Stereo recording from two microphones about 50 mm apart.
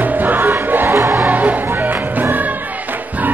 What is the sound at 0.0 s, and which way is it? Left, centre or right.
Music, right.